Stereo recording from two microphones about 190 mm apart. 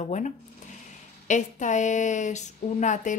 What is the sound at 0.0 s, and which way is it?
A woman's voice, 40° left (ahead or behind).